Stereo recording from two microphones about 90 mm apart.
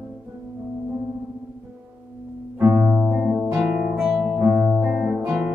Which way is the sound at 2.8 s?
15° right (ahead or behind).